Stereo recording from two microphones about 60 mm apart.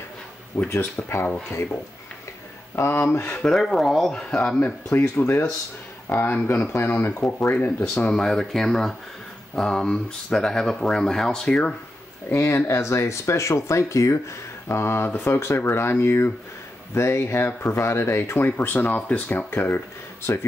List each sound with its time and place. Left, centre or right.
0.5 s speech: left
2.7 s speech: left
3.4 s speech: centre
4.6 s speech: left
5.0 s speech: left
8.1 s speech: centre
12.4 s speech: left
14.7 s speech: left
19.3 s speech: left